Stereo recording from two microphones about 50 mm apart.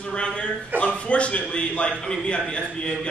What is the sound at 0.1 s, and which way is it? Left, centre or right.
A man's voice, left.